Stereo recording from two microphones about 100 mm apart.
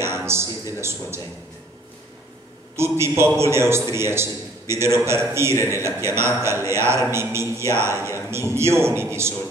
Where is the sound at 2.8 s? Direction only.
25° right (ahead or behind).